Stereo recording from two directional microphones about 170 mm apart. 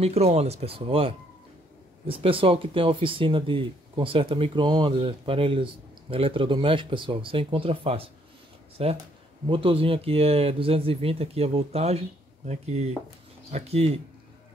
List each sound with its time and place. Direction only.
0.0 s speech: 40° right (ahead or behind)